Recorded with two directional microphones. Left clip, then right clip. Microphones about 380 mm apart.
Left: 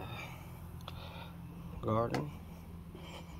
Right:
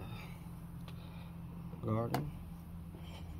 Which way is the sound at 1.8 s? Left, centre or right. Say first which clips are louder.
Left 5 dB; centre.